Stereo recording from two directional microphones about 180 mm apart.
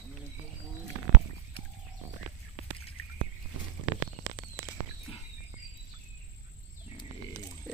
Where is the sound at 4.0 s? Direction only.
15° right (ahead or behind).